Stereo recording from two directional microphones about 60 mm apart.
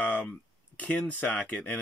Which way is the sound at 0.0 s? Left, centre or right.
Left.